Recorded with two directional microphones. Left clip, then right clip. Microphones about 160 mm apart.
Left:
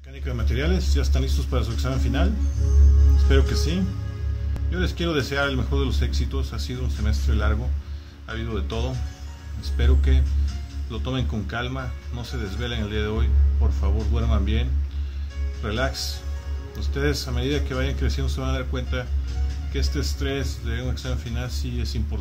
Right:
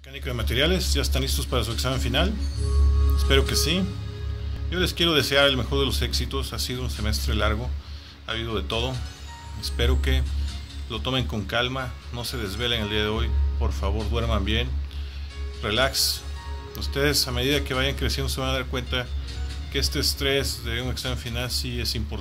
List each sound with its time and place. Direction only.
0.2 s a man's voice: 15° right (ahead or behind)